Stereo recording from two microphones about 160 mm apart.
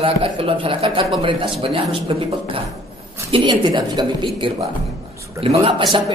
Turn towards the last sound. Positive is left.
turn(degrees=-35)  # may be behind; listen again after turning